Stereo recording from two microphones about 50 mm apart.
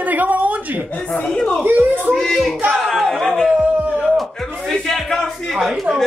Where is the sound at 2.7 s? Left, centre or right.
Centre.